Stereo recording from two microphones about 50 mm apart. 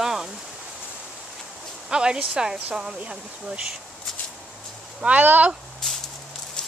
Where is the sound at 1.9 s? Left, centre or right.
Centre.